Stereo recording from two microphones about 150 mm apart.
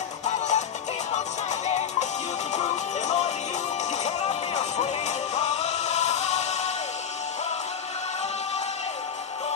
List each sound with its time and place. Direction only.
0.2 s music: 50° left (ahead or behind)
1.7 s music: 45° left (ahead or behind)